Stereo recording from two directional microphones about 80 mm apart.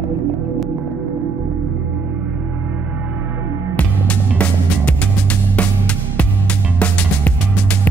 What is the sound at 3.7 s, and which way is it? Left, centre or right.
Music, centre.